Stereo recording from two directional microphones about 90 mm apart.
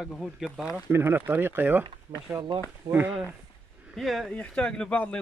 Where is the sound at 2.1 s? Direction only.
45° right (ahead or behind).